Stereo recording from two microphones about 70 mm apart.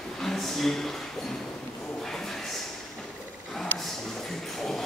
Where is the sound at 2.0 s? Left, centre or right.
Centre.